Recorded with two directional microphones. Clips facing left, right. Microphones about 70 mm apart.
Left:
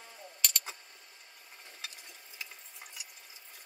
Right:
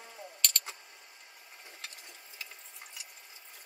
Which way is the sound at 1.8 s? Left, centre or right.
Centre.